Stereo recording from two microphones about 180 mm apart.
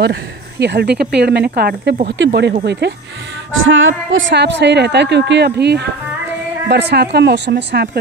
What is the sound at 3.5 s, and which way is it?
Speech, 90° right.